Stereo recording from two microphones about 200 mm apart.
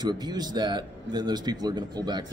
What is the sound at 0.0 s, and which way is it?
A man's voice, 20° right (ahead or behind).